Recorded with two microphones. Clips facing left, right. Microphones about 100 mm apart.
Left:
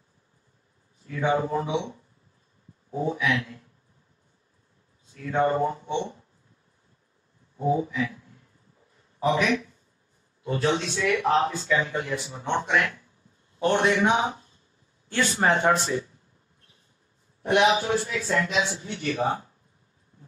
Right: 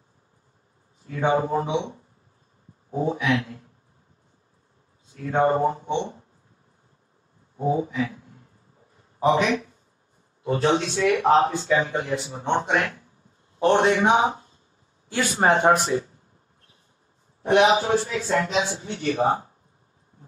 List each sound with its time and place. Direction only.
1.0 s speech: 35° right (ahead or behind)
5.1 s speech: 35° right (ahead or behind)
7.5 s a sound: 30° right (ahead or behind)
9.2 s a man's voice: 35° right (ahead or behind)
17.4 s speech: 30° right (ahead or behind)